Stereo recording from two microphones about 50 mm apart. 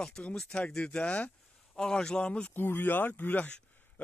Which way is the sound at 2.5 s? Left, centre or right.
Left.